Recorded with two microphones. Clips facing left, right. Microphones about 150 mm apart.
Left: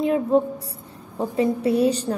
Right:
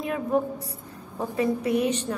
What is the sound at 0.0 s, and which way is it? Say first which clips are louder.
A woman's voice: left 6 dB; 30° left (ahead or behind).